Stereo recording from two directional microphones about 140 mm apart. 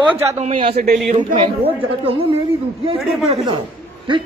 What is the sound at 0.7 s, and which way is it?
Speech, 90° right.